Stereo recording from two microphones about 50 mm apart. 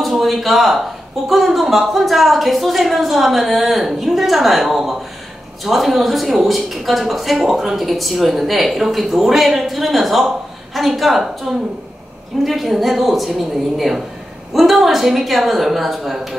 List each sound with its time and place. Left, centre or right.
0.0 s a woman's voice: centre